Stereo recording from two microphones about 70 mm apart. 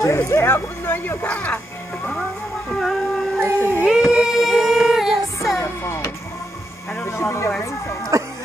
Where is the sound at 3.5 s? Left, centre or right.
Left.